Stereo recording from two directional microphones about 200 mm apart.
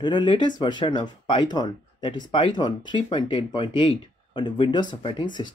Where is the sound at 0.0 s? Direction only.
25° left (ahead or behind).